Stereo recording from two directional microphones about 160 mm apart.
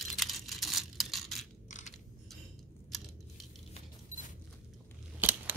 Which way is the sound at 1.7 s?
50° left (ahead or behind).